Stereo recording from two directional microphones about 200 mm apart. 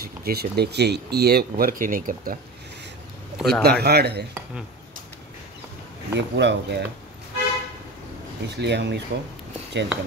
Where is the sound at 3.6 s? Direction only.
50° right (ahead or behind).